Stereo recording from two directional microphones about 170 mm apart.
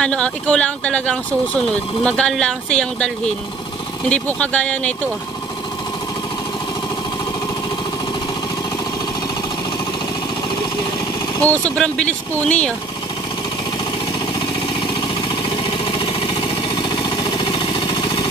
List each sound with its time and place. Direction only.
0.0 s speech: 5° left (ahead or behind)
4.1 s speech: 10° left (ahead or behind)
11.4 s speech: 5° left (ahead or behind)
15.5 s vehicle: 30° left (ahead or behind)